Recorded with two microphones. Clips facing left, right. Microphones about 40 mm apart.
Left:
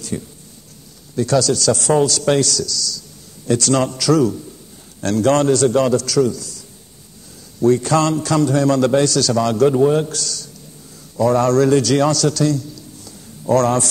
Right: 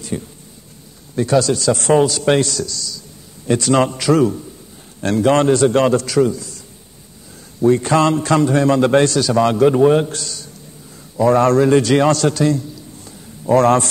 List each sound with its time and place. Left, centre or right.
0.1 s speech: centre
1.1 s a man's voice: right
7.6 s a man's voice: right
8.9 s a man's voice: right
9.2 s a man's voice: right